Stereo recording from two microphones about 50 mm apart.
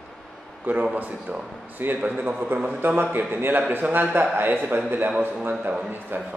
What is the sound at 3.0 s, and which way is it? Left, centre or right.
Speech, right.